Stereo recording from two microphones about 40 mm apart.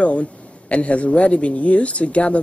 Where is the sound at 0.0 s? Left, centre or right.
Left.